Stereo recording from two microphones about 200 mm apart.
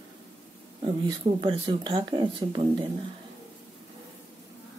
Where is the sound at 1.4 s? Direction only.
25° right (ahead or behind).